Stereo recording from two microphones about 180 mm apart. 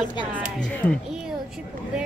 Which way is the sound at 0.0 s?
25° left (ahead or behind).